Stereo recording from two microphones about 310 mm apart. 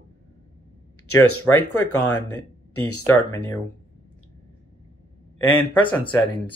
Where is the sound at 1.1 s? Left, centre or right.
Left.